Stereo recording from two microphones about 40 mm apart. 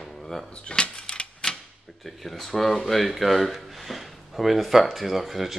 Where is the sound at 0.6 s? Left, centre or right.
Left.